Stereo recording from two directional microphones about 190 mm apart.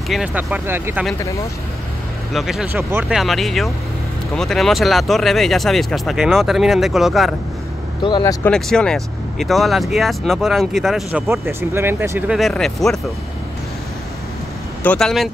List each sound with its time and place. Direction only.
0.1 s speech: 5° right (ahead or behind)
2.3 s speech: centre (ahead or behind)
8.0 s speech: 20° left (ahead or behind)
8.5 s speech: 5° left (ahead or behind)
11.4 s speech: 10° right (ahead or behind)
14.8 s speech: 5° left (ahead or behind)